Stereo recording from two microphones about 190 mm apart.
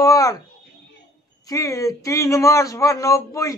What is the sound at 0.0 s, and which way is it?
Speech, 15° left (ahead or behind).